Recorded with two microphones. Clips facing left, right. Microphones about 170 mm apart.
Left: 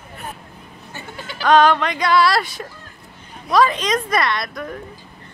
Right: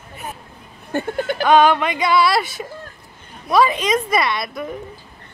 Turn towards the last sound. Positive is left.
turn(degrees=-5)  # may be behind; listen again after turning